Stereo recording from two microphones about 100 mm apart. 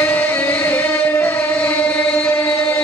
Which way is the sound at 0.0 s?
15° left (ahead or behind).